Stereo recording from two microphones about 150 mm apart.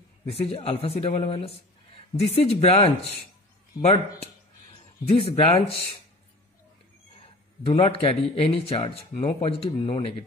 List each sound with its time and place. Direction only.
0.3 s speech: 40° left (ahead or behind)
3.8 s speech: 25° left (ahead or behind)
5.1 s speech: 40° left (ahead or behind)
7.6 s speech: 40° left (ahead or behind)